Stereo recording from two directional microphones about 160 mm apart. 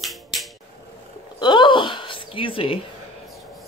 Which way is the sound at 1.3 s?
30° left (ahead or behind).